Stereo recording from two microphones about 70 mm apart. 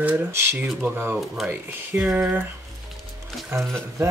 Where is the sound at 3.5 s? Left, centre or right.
Right.